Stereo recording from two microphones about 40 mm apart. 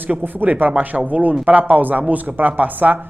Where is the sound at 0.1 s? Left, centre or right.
Right.